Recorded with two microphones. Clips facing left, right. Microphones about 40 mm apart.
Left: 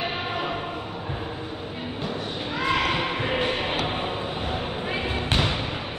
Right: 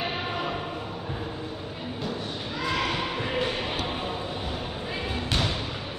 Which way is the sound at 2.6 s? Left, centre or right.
Left.